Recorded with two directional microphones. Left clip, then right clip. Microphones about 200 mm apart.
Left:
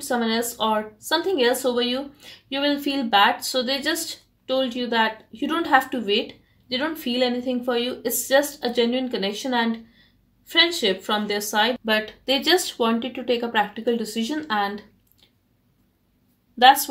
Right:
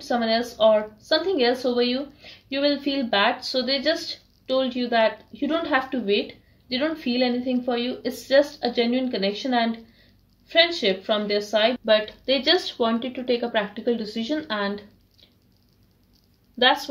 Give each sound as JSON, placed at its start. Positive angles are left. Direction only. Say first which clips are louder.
{"t": 0.1, "sound": "speech", "louder": "right 1 dB", "side_deg": 35}